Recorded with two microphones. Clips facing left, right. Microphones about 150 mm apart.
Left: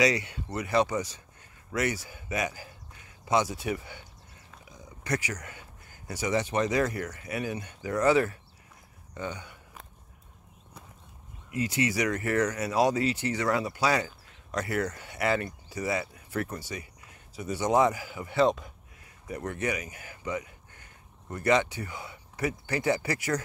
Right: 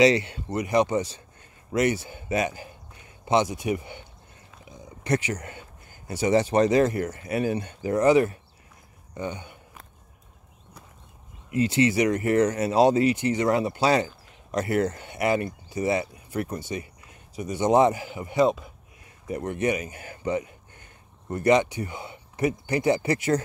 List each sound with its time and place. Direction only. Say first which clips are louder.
0.0 s speech: right 7 dB; 30° right (ahead or behind)
11.5 s speech: right 7 dB; 25° right (ahead or behind)
21.3 s speech: right 5 dB; 20° right (ahead or behind)